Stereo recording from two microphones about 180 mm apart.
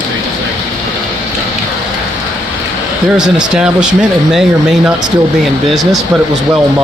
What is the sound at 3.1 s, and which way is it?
Speech, 25° right (ahead or behind).